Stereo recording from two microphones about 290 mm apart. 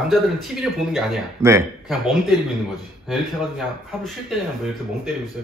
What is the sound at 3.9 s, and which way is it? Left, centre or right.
Speech, centre.